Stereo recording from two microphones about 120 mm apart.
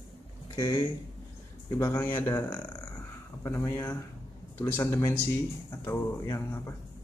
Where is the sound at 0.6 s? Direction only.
35° left (ahead or behind).